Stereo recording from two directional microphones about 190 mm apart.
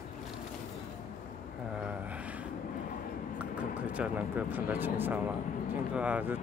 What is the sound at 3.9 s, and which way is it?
Speech, 5° right (ahead or behind).